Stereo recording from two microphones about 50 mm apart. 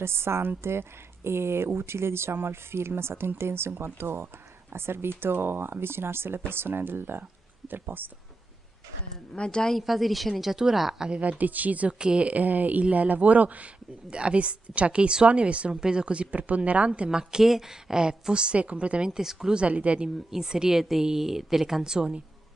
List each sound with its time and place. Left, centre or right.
0.0 s speech: right
9.3 s a woman's voice: centre
9.8 s a woman's voice: centre
11.1 s a woman's voice: right
12.0 s a woman's voice: right
17.2 s a woman's voice: centre
19.6 s a woman's voice: right
20.2 s a woman's voice: centre